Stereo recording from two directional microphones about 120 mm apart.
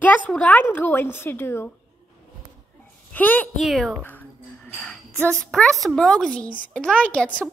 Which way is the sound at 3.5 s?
Centre (ahead or behind).